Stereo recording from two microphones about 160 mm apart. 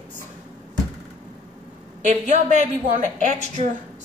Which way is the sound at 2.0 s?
45° right (ahead or behind).